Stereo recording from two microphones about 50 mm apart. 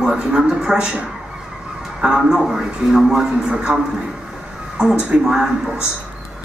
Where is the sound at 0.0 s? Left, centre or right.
Centre.